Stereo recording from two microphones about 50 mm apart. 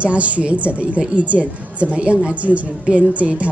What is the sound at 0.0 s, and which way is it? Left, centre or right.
Speech, right.